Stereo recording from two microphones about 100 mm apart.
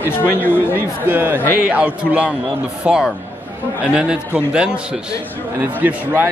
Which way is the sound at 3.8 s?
10° right (ahead or behind).